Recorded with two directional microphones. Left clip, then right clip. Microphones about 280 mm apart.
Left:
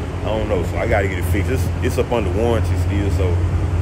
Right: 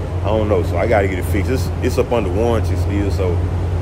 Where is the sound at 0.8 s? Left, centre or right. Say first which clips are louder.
Right 3 dB; centre.